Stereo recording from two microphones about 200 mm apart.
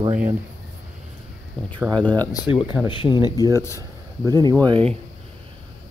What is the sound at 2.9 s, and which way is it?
Speech, 25° left (ahead or behind).